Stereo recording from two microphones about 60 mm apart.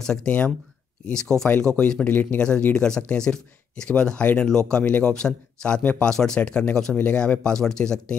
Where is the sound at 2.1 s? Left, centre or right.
Left.